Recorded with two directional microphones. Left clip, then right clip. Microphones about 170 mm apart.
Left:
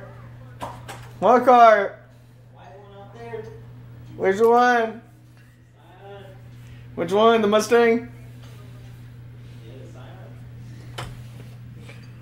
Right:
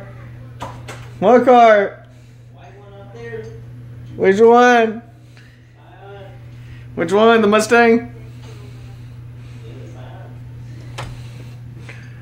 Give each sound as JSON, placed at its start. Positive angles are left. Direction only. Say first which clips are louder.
{"t": 1.2, "sound": "speech", "louder": "right 4 dB", "side_deg": -55}
{"t": 4.2, "sound": "a man's voice", "louder": "right 7 dB", "side_deg": -65}
{"t": 4.6, "sound": "speech", "louder": "right 6 dB", "side_deg": -50}
{"t": 7.0, "sound": "speech", "louder": "right 5 dB", "side_deg": -15}